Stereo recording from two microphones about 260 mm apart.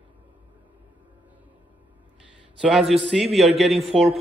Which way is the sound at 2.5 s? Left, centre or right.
Centre.